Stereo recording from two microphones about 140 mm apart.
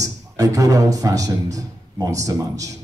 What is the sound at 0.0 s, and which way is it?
Speech, 25° right (ahead or behind).